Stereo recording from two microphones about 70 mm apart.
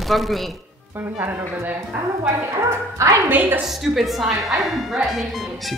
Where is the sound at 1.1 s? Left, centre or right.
Right.